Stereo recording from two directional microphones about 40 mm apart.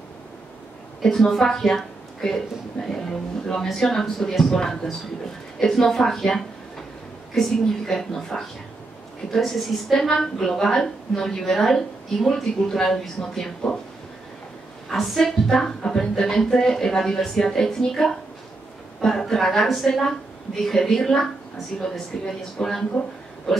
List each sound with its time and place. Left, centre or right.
1.0 s a woman's voice: centre
14.9 s a woman's voice: centre